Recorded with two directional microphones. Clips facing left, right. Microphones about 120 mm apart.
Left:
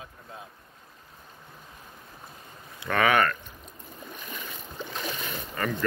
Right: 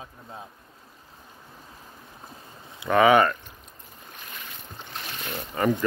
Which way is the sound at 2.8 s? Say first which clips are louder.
Right 5 dB; 20° right (ahead or behind).